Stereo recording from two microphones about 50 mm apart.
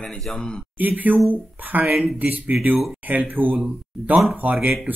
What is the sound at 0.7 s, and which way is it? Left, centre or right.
Speech, right.